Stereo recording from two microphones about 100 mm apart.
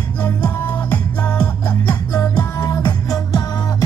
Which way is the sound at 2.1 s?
35° left (ahead or behind).